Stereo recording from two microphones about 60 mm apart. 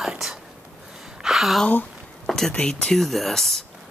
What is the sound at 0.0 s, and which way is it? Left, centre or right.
Whispering, centre.